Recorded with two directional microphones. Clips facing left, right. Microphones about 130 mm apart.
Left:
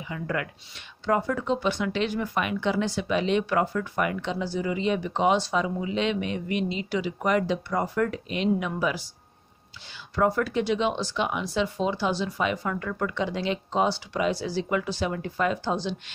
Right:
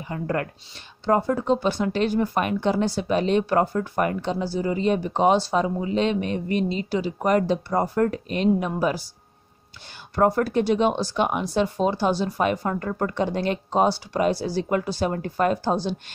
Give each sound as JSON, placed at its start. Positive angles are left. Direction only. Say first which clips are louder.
{"t": 0.1, "sound": "speech", "louder": "right 4 dB", "side_deg": -40}
{"t": 10.1, "sound": "speech", "louder": "right 4 dB", "side_deg": -45}